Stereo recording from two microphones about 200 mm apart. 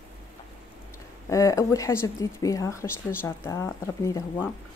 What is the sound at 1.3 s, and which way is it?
Speech, 15° left (ahead or behind).